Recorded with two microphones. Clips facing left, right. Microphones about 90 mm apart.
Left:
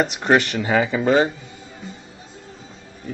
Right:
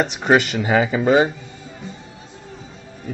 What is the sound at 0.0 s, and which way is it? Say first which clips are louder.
A man's voice: right 1 dB; 5° right (ahead or behind).